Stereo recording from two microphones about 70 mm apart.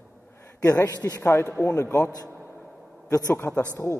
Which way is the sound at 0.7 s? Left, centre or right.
Left.